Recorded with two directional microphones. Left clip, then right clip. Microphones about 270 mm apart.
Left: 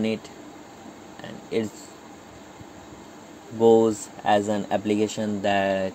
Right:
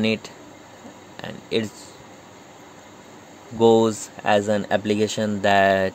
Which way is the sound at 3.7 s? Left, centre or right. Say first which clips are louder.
Right 1 dB; right.